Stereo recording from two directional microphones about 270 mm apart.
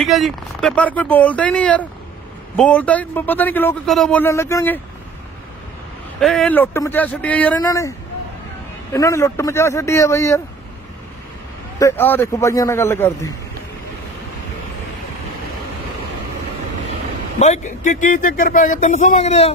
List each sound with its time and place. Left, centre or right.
0.0 s a man's voice: centre
6.1 s speech: centre
8.9 s a man's voice: centre
11.8 s a man's voice: centre
17.4 s speech: left